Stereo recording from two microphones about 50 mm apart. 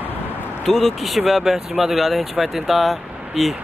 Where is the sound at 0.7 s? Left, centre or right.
Centre.